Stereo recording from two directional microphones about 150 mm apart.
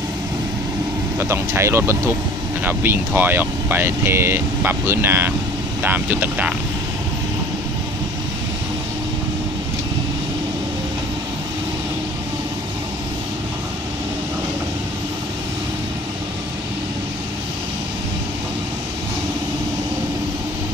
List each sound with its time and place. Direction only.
1.3 s speech: 15° right (ahead or behind)